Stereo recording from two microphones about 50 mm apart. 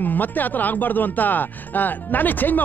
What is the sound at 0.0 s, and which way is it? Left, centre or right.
Speech, left.